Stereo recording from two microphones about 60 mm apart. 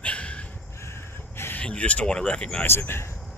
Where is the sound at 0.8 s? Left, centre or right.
Left.